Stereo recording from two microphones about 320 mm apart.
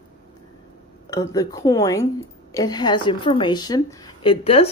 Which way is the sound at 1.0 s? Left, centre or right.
Centre.